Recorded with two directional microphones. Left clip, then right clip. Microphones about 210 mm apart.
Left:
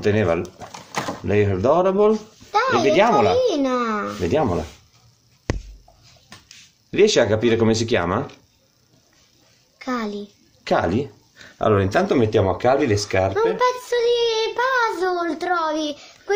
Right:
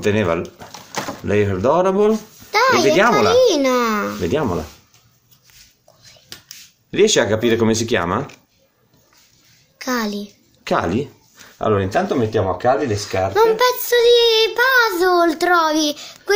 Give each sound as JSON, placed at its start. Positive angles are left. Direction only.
{"t": 0.0, "sound": "speech", "side_deg": -5}
{"t": 2.5, "sound": "a sound", "side_deg": -45}
{"t": 3.1, "sound": "a child's voice", "side_deg": -45}
{"t": 4.2, "sound": "speech", "side_deg": 0}
{"t": 6.9, "sound": "speech", "side_deg": 0}
{"t": 9.8, "sound": "a child's voice", "side_deg": -40}
{"t": 10.6, "sound": "speech", "side_deg": -5}
{"t": 11.5, "sound": "speech", "side_deg": 15}
{"t": 13.6, "sound": "child singing", "side_deg": -55}